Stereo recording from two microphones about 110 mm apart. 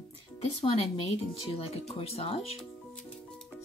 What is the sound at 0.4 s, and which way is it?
Speech, 55° left (ahead or behind).